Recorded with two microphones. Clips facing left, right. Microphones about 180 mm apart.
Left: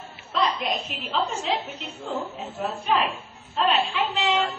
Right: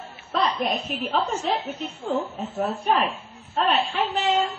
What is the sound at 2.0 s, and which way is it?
A woman's voice, 45° right (ahead or behind).